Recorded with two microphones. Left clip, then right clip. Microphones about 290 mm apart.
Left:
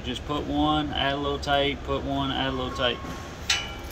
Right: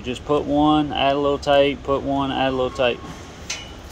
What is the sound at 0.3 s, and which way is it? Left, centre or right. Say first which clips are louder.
Speech: right 8 dB; centre.